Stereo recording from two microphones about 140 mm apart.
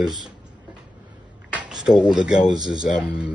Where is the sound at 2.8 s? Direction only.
75° left (ahead or behind).